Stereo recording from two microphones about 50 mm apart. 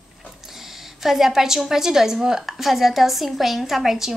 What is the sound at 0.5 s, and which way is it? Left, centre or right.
A woman's voice, centre.